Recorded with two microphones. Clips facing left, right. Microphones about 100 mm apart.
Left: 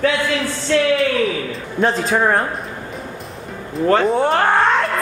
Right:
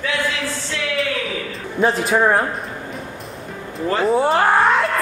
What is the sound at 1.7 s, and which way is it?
Speech, 5° right (ahead or behind).